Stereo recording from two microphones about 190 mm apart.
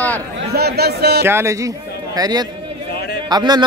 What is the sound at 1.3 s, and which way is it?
A man's voice, 15° right (ahead or behind).